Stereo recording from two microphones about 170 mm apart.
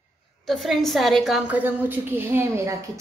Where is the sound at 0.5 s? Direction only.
Centre (ahead or behind).